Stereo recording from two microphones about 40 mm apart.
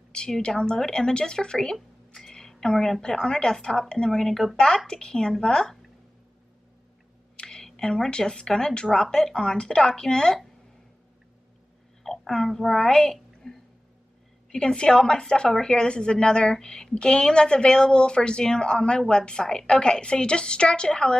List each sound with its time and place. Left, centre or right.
0.1 s a woman's voice: left
7.3 s speech: centre
12.0 s a sound: centre
12.5 s a child's voice: centre